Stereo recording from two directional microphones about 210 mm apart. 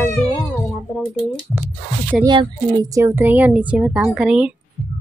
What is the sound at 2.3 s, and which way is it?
Speech, 20° right (ahead or behind).